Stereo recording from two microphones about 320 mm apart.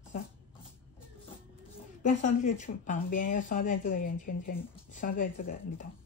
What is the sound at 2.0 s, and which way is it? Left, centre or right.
A woman's voice, left.